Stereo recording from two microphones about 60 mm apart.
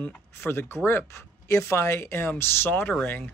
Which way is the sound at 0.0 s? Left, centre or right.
Left.